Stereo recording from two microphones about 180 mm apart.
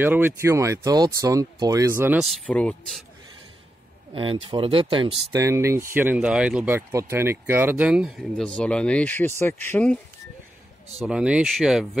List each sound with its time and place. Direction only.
0.0 s speech: 10° right (ahead or behind)
2.2 s speech: 5° left (ahead or behind)
4.1 s speech: 30° right (ahead or behind); by 9.9 s 10° left (ahead or behind)
11.0 s speech: 5° right (ahead or behind)